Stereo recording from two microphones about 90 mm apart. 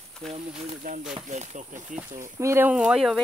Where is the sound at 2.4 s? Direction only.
25° right (ahead or behind).